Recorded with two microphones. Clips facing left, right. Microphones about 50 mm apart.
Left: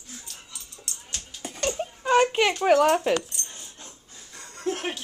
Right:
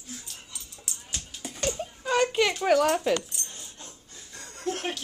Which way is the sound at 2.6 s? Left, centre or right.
Left.